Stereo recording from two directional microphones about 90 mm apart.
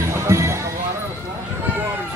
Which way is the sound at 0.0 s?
30° right (ahead or behind).